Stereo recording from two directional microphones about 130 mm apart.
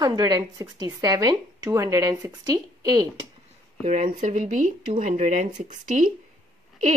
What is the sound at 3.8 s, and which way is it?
Speech, 70° right (ahead or behind).